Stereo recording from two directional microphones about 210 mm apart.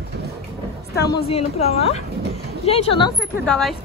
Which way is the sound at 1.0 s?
30° left (ahead or behind).